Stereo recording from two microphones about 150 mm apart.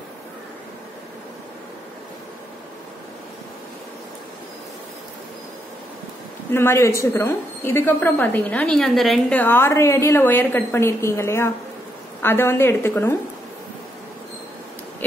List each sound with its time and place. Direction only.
6.5 s a woman's voice: 15° left (ahead or behind); by 9.4 s centre (ahead or behind)
9.4 s a woman's voice: 15° left (ahead or behind)